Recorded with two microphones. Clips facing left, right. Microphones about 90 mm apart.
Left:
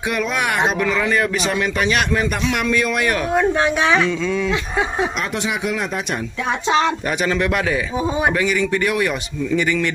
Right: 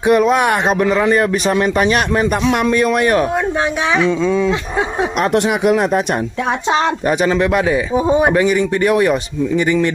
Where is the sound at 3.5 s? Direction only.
15° right (ahead or behind).